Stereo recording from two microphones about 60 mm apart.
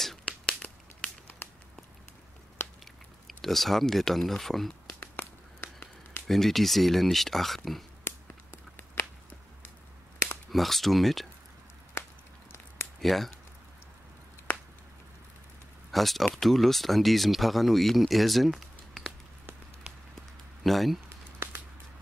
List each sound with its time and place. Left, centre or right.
0.2 s tearing: centre
3.4 s speech: centre
5.0 s a sound: left
6.2 s speech: centre
8.0 s a sound: left
10.5 s speech: centre
13.0 s speech: centre
15.9 s speech: centre
20.6 s speech: centre